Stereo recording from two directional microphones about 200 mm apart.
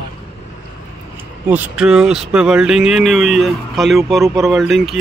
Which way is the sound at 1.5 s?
5° right (ahead or behind).